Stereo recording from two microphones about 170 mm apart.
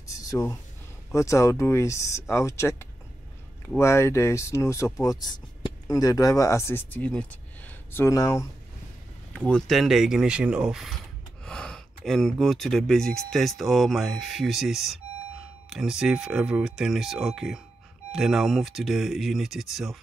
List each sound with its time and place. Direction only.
0.1 s a sound: 20° left (ahead or behind)
1.1 s speech: 20° left (ahead or behind)
9.5 s speech: centre (ahead or behind)